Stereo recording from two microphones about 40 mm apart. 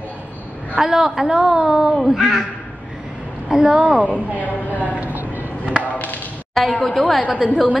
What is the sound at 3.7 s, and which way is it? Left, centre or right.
Speech, right.